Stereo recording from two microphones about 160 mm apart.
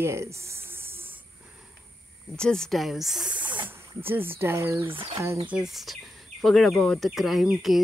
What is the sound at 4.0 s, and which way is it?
Speech, 15° right (ahead or behind).